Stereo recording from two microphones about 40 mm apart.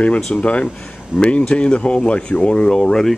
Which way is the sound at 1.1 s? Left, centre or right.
Right.